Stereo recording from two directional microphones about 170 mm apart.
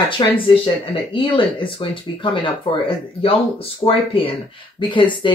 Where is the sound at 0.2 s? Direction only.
30° left (ahead or behind).